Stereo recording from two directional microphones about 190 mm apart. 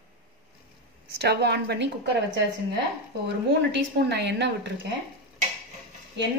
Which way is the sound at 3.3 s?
65° right (ahead or behind).